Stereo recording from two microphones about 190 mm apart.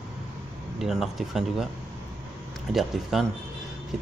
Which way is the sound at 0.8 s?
Centre (ahead or behind).